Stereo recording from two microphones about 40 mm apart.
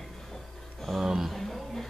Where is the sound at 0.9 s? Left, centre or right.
Centre.